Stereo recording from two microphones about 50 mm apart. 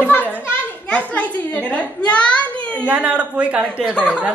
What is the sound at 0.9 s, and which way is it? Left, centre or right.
A child's voice, left.